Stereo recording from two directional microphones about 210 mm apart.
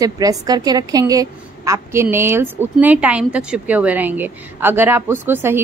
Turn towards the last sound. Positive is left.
turn(degrees=-10)  # may be behind; listen again after turning